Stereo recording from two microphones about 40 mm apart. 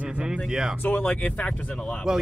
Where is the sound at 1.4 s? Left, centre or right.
Left.